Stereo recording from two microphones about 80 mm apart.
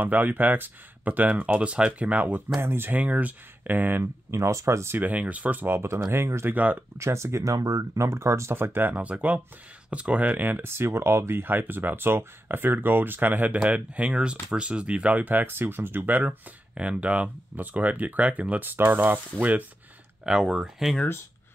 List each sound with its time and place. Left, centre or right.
0.0 s speech: right
4.0 s speech: right
4.9 s speech: right
6.5 s speech: centre
7.0 s speech: right
20.2 s speech: centre